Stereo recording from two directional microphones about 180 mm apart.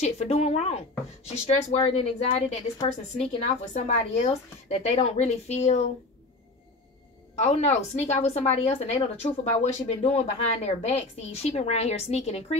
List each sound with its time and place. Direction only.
0.0 s a woman's voice: 35° left (ahead or behind)
7.3 s a woman's voice: 35° left (ahead or behind)